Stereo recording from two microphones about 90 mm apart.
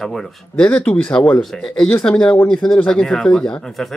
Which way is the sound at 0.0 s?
5° left (ahead or behind).